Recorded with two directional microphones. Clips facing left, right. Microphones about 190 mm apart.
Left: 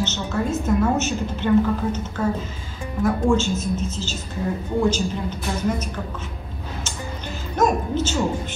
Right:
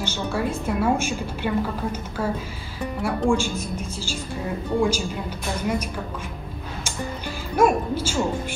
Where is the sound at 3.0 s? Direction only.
10° right (ahead or behind).